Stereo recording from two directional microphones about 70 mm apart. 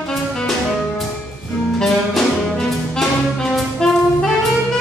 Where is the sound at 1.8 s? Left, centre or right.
Centre.